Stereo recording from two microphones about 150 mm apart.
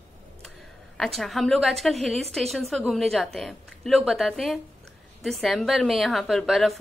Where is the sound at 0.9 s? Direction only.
Centre (ahead or behind).